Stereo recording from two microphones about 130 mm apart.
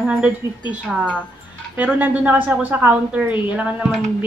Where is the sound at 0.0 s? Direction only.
10° right (ahead or behind).